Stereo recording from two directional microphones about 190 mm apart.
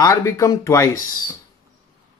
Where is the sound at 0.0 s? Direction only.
15° left (ahead or behind).